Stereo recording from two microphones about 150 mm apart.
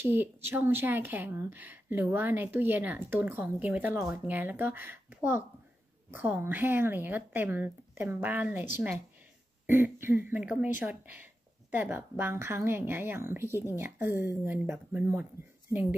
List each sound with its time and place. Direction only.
0.0 s a woman's voice: 15° right (ahead or behind)
9.7 s a woman's voice: 15° right (ahead or behind)